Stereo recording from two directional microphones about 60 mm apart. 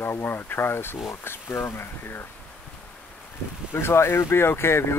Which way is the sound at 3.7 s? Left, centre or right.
Left.